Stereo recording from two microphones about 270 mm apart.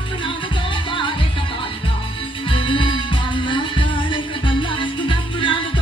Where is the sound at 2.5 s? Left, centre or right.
Centre.